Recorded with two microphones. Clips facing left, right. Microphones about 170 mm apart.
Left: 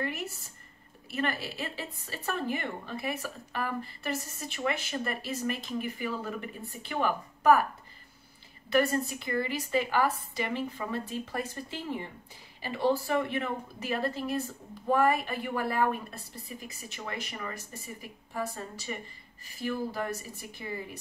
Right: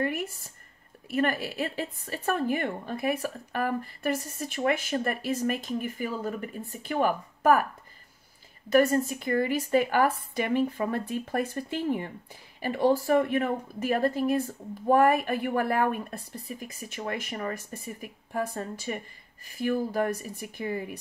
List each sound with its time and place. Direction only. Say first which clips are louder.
0.0 s speech: right 5 dB; 50° right (ahead or behind)
8.6 s speech: right 5 dB; 45° right (ahead or behind)